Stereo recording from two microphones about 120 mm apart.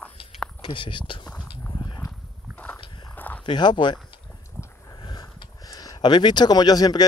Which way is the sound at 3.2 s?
15° left (ahead or behind).